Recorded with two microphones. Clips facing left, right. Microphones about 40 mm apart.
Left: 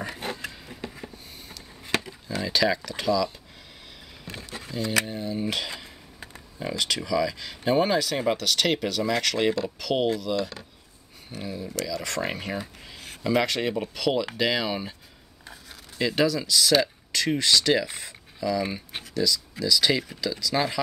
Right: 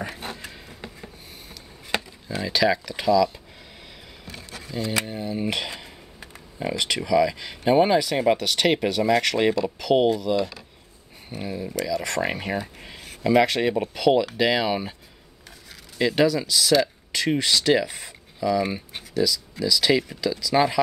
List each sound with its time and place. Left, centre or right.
2.2 s speech: centre
4.8 s speech: centre
16.0 s speech: centre
20.5 s speech: right